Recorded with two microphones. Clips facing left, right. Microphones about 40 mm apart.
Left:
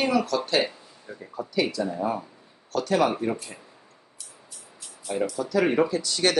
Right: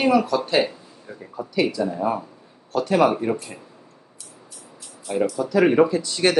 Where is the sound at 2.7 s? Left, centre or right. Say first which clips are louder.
Right 4 dB; right.